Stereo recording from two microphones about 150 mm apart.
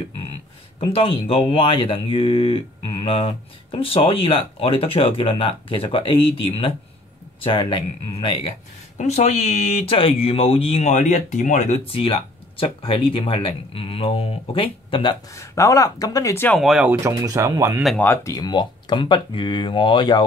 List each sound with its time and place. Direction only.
0.7 s speech: 40° left (ahead or behind)
15.3 s speech: 20° left (ahead or behind)
16.4 s speech: centre (ahead or behind)
17.0 s speech: 20° right (ahead or behind)
17.9 s speech: 15° left (ahead or behind); by 20.2 s 30° left (ahead or behind)